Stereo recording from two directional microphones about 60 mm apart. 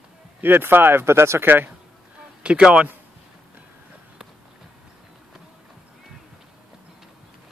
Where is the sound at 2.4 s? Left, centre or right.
Centre.